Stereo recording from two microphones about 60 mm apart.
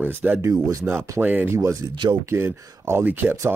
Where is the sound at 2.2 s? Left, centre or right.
Right.